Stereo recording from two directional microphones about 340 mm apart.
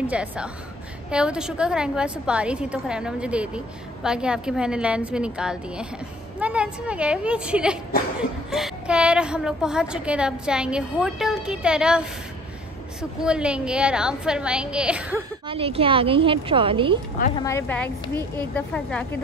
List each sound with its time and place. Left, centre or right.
0.0 s a woman's voice: centre
13.2 s a woman's voice: centre
15.4 s a woman's voice: centre
17.4 s a woman's voice: centre